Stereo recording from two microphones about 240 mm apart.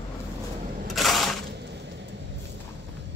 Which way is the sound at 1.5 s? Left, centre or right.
Right.